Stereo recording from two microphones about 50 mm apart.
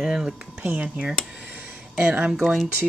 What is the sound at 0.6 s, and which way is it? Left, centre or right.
Speech, right.